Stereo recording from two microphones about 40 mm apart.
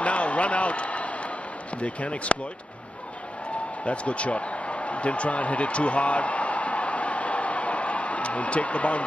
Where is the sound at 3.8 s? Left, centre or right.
Left.